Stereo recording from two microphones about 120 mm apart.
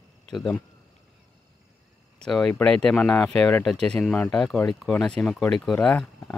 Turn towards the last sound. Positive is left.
turn(degrees=5)  # may be behind; listen again after turning